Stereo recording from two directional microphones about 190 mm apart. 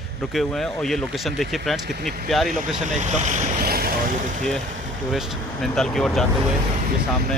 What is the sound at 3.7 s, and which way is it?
Boat, 50° right (ahead or behind).